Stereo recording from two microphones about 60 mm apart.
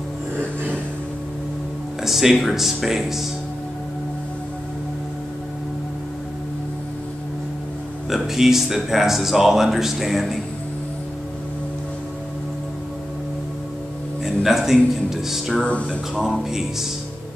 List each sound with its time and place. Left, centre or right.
2.0 s speech: centre
8.1 s speech: centre
14.2 s speech: centre
15.6 s speech: left
15.9 s speech: centre